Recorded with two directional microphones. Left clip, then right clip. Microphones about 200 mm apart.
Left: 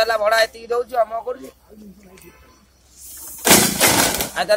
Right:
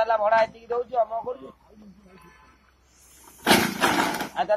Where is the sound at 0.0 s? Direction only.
20° left (ahead or behind).